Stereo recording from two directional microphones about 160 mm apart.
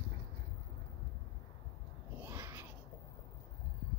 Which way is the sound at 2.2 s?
15° right (ahead or behind).